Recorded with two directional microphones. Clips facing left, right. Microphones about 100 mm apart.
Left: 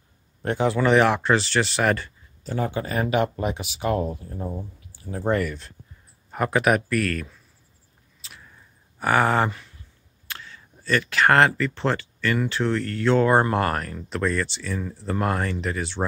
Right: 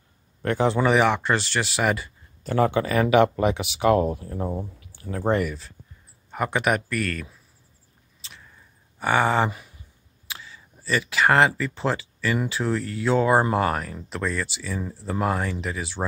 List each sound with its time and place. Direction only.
0.7 s speech: 5° right (ahead or behind)
2.4 s speech: 75° right (ahead or behind)
4.2 s speech: 90° right
4.7 s a sound: 70° right (ahead or behind)
5.4 s speech: 5° right (ahead or behind)
8.2 s a sound: 5° left (ahead or behind)
8.9 s speech: centre (ahead or behind)
9.5 s a sound: 15° right (ahead or behind)
10.2 s speech: 5° right (ahead or behind)